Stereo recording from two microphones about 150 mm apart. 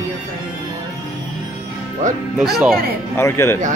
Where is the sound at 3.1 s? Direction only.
15° left (ahead or behind).